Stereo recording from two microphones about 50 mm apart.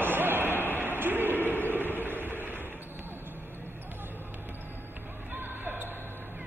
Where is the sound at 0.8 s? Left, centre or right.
Right.